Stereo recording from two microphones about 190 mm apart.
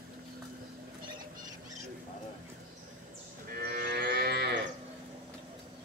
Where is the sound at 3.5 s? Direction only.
50° right (ahead or behind).